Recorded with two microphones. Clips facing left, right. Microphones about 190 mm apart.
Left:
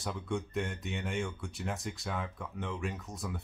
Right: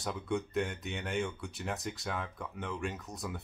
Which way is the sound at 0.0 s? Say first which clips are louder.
Right 1 dB; centre (ahead or behind).